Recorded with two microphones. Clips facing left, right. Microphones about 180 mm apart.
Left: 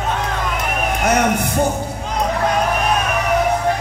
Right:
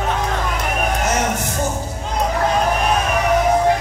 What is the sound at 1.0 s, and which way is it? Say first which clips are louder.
Music: left 4 dB; 60° left (ahead or behind).